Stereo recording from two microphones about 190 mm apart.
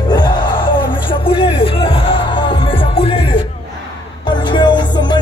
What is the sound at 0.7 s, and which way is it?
Music, 25° left (ahead or behind).